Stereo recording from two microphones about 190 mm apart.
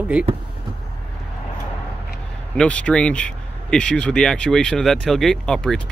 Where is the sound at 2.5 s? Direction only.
5° left (ahead or behind).